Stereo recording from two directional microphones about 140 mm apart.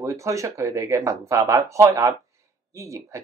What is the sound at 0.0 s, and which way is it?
Speech, 20° right (ahead or behind).